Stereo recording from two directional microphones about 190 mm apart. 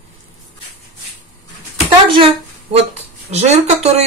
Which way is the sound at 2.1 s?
30° right (ahead or behind).